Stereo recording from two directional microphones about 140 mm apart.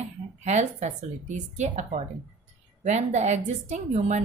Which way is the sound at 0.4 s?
55° right (ahead or behind).